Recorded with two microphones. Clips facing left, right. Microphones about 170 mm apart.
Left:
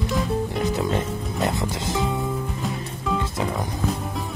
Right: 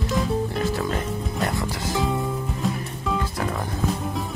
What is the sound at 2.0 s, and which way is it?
Music, centre (ahead or behind).